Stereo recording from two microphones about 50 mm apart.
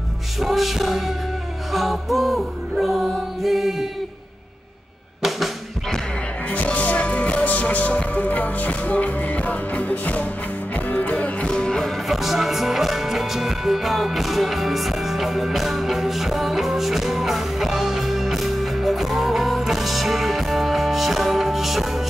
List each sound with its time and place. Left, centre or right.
0.4 s music: centre
6.5 s music: left
11.4 s music: centre
12.1 s music: centre